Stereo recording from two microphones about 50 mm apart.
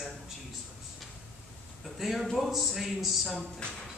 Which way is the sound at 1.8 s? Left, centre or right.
Centre.